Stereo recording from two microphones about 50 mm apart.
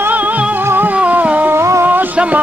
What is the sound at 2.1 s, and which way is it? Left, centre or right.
Speech, right.